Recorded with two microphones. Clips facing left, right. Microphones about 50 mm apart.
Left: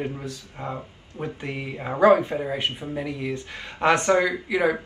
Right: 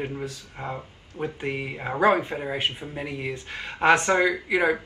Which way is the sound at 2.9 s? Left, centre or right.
Right.